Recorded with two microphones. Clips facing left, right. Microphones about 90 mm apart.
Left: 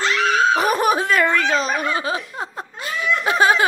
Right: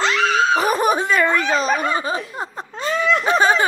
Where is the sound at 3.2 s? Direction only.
10° left (ahead or behind).